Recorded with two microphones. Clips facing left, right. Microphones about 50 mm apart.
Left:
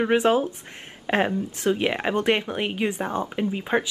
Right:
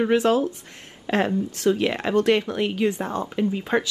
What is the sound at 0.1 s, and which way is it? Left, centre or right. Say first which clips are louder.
Speech: even; left.